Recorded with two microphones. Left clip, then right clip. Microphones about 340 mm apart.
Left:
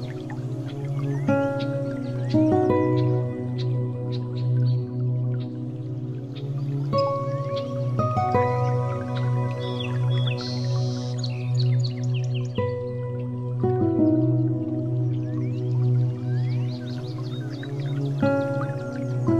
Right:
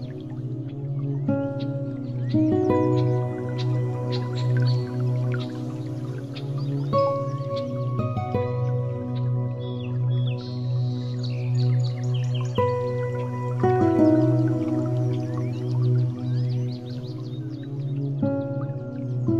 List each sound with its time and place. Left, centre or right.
1.0 s music: left
2.3 s music: centre
6.9 s music: centre
8.0 s music: centre
12.5 s music: centre
13.6 s music: right
18.2 s music: left